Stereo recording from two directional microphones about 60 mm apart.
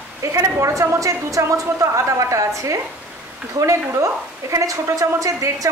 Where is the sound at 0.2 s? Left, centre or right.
Right.